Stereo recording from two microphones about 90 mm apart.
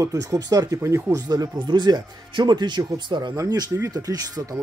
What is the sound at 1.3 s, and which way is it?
Speech, 50° right (ahead or behind).